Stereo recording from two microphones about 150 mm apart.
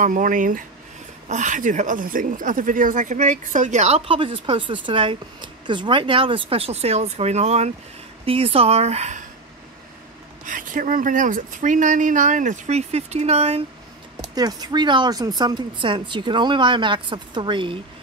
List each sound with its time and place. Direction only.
0.0 s speech: 60° right (ahead or behind); by 9.2 s 45° right (ahead or behind)
10.4 s speech: 60° right (ahead or behind); by 13.6 s 45° right (ahead or behind)
14.3 s speech: 25° right (ahead or behind)